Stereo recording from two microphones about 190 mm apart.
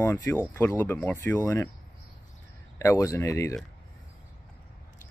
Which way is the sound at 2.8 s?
15° left (ahead or behind).